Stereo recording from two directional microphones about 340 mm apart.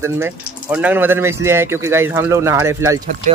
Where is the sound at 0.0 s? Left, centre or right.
Centre.